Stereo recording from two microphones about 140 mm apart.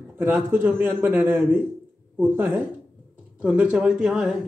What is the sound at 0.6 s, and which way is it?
Speech, 15° right (ahead or behind).